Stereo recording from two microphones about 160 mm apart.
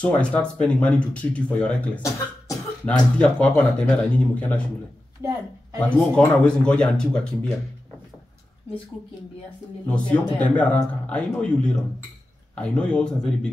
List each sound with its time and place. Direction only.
0.0 s speech: 5° left (ahead or behind)
2.9 s speech: 10° left (ahead or behind)
5.2 s speech: 15° right (ahead or behind)
5.8 s speech: 5° left (ahead or behind)
9.8 s speech: 5° left (ahead or behind)